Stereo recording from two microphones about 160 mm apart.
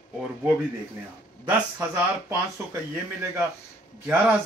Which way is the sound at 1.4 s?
15° right (ahead or behind).